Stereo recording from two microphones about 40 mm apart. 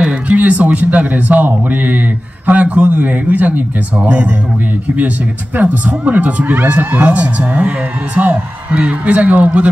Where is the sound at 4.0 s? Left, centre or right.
Right.